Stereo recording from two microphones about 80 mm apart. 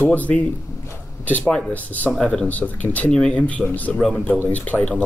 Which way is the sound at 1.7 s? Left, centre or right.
Centre.